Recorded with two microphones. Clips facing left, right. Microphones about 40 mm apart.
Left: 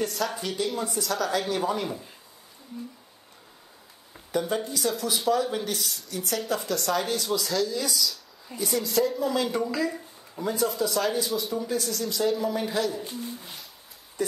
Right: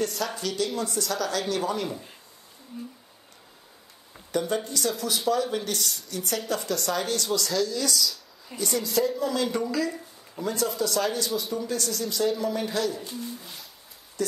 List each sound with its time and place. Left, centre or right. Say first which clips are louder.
0.0 s speech: even; centre
0.4 s speech: right 1 dB; centre
1.0 s speech: left 1 dB; centre
4.3 s speech: even; centre
8.5 s speech: left 1 dB; centre